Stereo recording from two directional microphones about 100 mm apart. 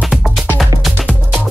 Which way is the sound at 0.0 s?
Centre (ahead or behind).